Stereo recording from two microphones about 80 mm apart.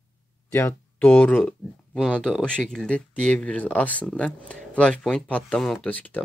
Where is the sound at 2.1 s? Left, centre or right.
Centre.